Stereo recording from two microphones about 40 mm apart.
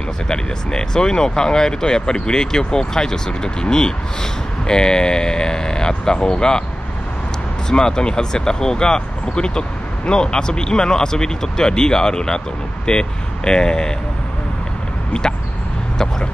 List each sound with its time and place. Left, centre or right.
0.3 s speech: left
7.7 s speech: centre